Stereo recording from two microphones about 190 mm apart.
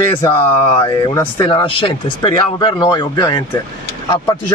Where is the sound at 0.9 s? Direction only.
20° left (ahead or behind).